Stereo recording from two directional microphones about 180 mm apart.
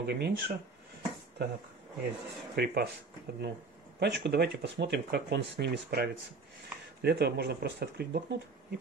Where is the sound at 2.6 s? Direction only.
70° right (ahead or behind).